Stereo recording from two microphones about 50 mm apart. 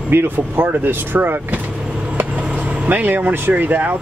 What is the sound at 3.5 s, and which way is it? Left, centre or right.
Speech, right.